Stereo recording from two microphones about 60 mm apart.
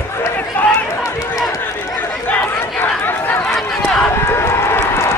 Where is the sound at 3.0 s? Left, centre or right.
Left.